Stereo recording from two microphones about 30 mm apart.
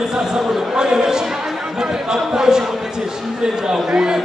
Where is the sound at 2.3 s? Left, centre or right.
Right.